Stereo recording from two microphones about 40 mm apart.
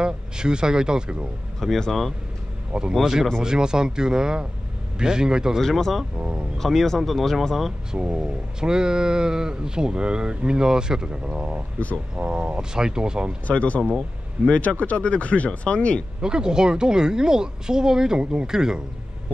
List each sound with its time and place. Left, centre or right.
0.0 s speech: centre
1.9 s speech: centre
2.9 s a woman's voice: centre
5.6 s speech: centre
7.9 s speech: right
13.5 s speech: left
16.2 s a woman's voice: centre
18.2 s speech: right
18.5 s a woman's voice: centre